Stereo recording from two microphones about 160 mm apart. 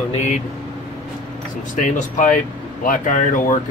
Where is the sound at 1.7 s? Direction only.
50° left (ahead or behind).